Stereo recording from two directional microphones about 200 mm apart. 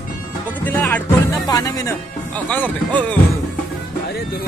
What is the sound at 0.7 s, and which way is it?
Speech, 10° left (ahead or behind).